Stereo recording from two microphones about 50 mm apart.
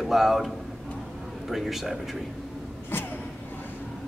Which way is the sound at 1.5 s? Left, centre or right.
Centre.